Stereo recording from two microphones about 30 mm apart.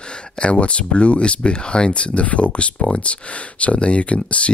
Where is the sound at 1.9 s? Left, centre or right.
Left.